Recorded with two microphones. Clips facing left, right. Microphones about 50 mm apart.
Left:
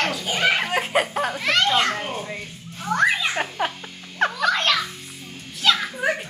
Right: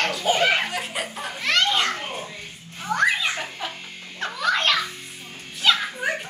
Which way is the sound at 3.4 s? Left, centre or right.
Left.